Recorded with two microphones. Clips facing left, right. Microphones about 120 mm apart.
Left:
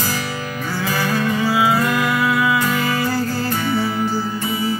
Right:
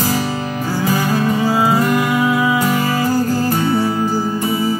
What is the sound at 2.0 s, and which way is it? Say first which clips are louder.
Music: right 3 dB; 15° right (ahead or behind).